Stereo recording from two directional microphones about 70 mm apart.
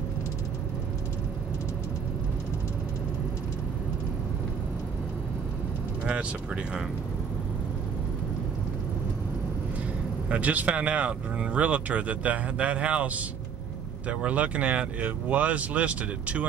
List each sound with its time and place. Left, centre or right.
6.0 s speech: centre
10.3 s speech: right